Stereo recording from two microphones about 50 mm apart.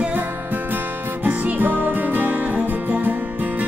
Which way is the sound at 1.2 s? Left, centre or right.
Right.